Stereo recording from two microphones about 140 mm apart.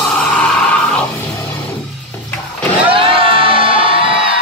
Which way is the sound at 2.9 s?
40° right (ahead or behind).